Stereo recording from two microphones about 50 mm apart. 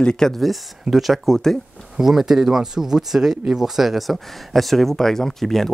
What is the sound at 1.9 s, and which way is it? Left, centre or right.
Speech, centre.